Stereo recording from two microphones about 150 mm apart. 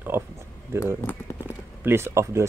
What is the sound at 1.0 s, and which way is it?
Speech, 20° left (ahead or behind).